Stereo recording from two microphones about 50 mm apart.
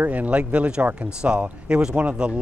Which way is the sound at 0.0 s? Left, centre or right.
Right.